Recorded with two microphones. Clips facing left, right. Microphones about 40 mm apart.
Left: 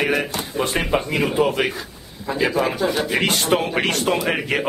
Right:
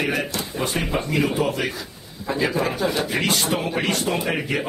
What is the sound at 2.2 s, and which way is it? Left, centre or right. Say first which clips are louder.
Speech: left 2 dB; centre.